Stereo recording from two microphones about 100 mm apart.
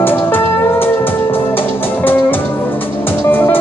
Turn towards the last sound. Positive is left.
turn(degrees=20)  # may be behind; listen again after turning